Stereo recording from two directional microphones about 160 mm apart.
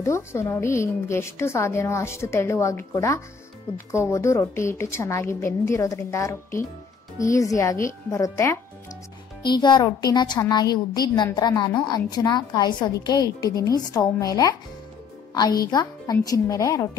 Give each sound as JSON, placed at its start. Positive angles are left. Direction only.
{"t": 0.0, "sound": "a woman's voice", "side_deg": 15}
{"t": 9.4, "sound": "a woman's voice", "side_deg": 30}
{"t": 15.7, "sound": "a woman's voice", "side_deg": 25}